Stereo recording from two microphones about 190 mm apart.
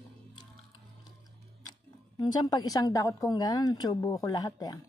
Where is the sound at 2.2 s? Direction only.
20° left (ahead or behind).